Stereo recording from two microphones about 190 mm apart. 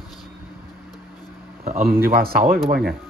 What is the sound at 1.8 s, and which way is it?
Speech, 50° right (ahead or behind).